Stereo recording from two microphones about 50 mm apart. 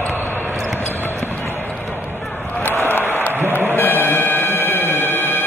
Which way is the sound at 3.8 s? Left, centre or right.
Left.